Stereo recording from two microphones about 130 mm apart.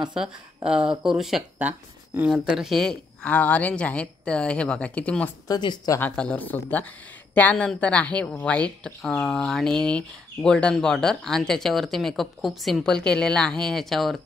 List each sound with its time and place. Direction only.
0.2 s a woman's voice: 5° right (ahead or behind)
5.5 s speech: 35° left (ahead or behind)
5.9 s a woman's voice: 10° left (ahead or behind)